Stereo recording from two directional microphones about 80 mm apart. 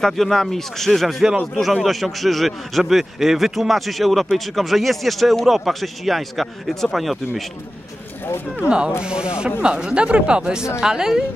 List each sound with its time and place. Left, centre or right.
0.0 s a man's voice: centre
8.6 s speech: centre